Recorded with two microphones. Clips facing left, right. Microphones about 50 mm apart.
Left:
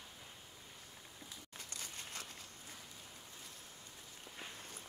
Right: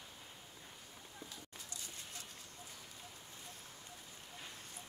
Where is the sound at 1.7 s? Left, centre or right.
Left.